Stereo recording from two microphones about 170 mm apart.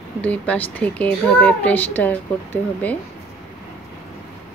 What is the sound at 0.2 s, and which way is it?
A child's voice, 10° left (ahead or behind).